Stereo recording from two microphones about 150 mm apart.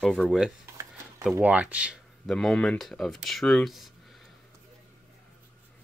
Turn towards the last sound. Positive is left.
turn(degrees=0)  # may be behind; listen again after turning